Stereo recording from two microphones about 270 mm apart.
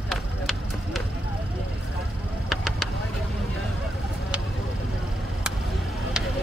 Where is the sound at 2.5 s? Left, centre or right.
Centre.